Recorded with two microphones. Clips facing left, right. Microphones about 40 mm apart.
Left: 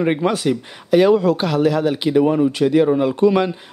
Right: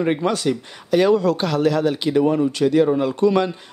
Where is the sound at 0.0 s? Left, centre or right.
Centre.